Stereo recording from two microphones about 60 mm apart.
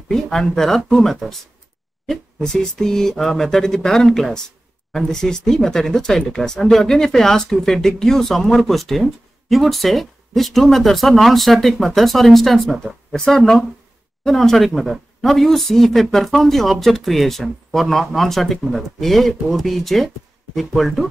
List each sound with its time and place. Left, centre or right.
0.1 s speech: centre